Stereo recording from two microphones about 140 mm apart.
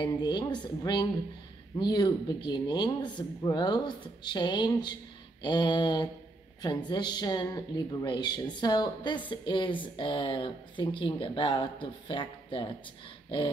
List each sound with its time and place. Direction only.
0.0 s speech: 35° left (ahead or behind)